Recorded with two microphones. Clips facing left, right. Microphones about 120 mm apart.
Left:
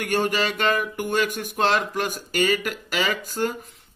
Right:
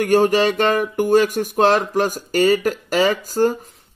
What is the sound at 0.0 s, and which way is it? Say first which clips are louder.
Speech: right 8 dB; 40° right (ahead or behind).